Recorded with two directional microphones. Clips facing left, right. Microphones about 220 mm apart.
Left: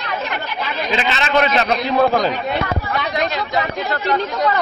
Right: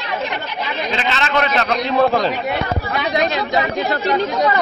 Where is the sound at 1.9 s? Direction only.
Centre (ahead or behind).